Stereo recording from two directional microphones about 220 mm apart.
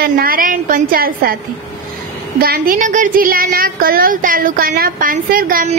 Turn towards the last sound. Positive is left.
turn(degrees=-40)  # may be behind; listen again after turning